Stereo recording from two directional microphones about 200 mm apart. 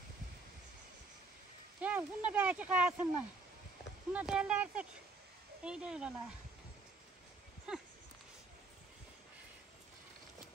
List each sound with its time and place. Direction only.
1.8 s speech: 5° right (ahead or behind)
4.1 s speech: 5° right (ahead or behind)
7.7 s a sound: 5° right (ahead or behind)